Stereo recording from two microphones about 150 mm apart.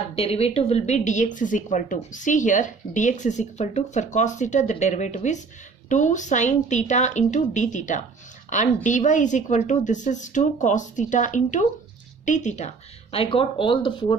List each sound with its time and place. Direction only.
0.1 s a woman's voice: 40° left (ahead or behind)